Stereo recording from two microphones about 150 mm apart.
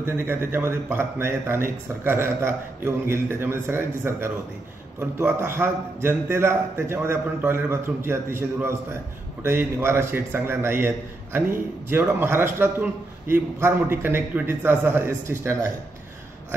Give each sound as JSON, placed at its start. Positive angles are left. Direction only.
{"t": 0.0, "sound": "a man's voice", "side_deg": -15}